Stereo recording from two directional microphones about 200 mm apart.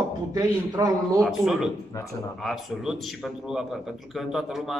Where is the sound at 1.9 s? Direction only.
15° left (ahead or behind).